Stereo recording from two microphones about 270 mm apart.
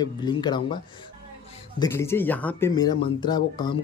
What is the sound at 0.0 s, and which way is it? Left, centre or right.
Speech, centre.